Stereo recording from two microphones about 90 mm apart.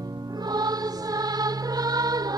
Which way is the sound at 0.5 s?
45° right (ahead or behind).